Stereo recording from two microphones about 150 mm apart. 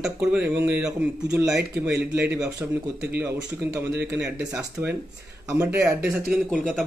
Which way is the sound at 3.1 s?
20° right (ahead or behind).